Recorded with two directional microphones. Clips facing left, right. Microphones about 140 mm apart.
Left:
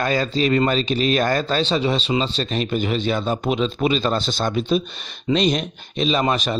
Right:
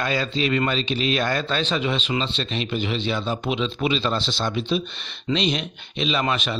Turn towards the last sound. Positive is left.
turn(degrees=40)  # may be behind; listen again after turning